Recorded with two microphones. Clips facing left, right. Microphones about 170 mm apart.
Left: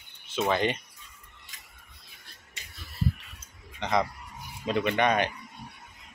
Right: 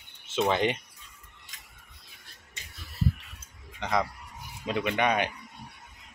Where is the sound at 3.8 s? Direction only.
5° right (ahead or behind).